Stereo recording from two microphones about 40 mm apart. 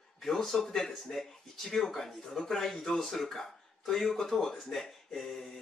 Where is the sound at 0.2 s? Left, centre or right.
Centre.